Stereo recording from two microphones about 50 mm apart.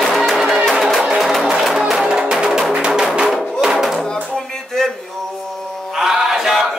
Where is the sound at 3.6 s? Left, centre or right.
Centre.